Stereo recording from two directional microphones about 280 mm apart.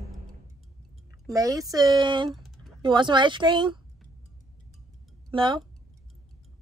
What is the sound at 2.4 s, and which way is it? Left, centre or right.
Typing, centre.